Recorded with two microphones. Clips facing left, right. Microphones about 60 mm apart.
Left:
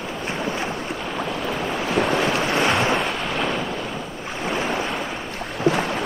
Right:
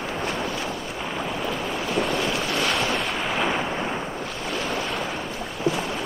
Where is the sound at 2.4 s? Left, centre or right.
Left.